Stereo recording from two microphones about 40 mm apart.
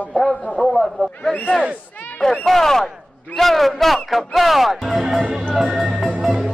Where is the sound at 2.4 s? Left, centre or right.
Centre.